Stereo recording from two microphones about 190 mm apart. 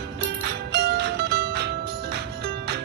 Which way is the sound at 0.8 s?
60° right (ahead or behind).